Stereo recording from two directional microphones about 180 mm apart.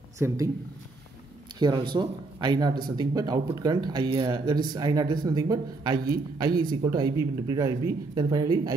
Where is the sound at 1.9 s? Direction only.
25° right (ahead or behind).